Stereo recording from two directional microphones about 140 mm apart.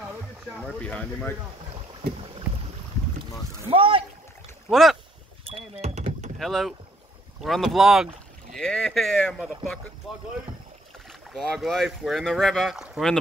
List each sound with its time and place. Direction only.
0.7 s speech: 5° left (ahead or behind)
3.7 s speech: 40° right (ahead or behind)
4.6 s speech: centre (ahead or behind)
5.5 s a sound: 50° right (ahead or behind)
6.3 s speech: centre (ahead or behind)
11.1 s speech: centre (ahead or behind)